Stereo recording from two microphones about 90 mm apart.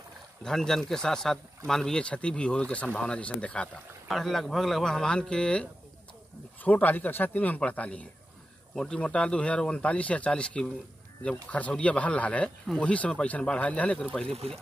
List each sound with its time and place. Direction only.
0.4 s speech: 5° left (ahead or behind)
4.1 s speech: 5° left (ahead or behind)
6.6 s speech: 20° left (ahead or behind)